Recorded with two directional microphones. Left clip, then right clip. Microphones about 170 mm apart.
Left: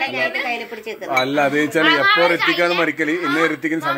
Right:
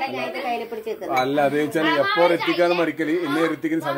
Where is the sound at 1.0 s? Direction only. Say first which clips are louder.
Left 3 dB; 30° left (ahead or behind).